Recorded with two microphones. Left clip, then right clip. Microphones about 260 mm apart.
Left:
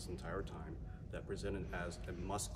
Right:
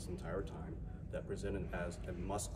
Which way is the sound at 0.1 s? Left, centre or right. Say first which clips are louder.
Right 2 dB; centre.